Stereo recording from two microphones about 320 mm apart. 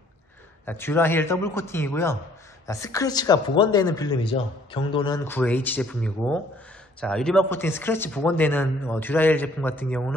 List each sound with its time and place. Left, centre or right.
0.7 s speech: centre